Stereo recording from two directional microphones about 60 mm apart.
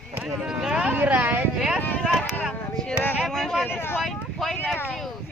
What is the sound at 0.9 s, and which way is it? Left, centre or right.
Speech, right.